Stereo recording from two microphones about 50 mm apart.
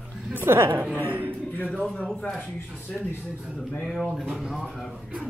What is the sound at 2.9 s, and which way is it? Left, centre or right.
A man's voice, centre.